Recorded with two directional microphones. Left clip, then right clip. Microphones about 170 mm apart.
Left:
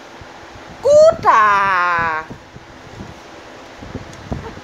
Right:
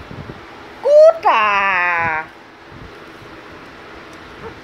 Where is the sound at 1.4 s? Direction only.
25° left (ahead or behind).